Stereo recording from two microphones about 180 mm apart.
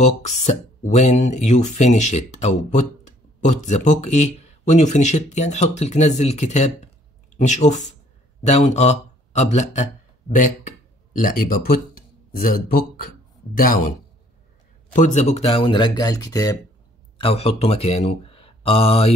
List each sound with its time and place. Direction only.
0.0 s speech: 40° left (ahead or behind); by 13.0 s 55° left (ahead or behind)
15.0 s speech: 40° left (ahead or behind); by 16.5 s 20° left (ahead or behind)
17.2 s speech: 35° left (ahead or behind)